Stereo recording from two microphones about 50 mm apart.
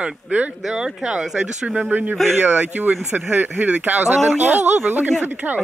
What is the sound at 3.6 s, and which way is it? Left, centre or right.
Speech, right.